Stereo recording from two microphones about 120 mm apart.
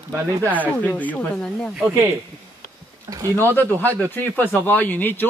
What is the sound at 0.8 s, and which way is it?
Speech, 10° left (ahead or behind).